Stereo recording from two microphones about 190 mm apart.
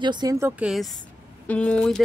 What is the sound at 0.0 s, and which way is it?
Speech, 20° right (ahead or behind).